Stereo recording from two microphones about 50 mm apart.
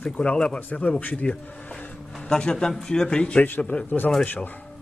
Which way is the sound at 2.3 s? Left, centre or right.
Centre.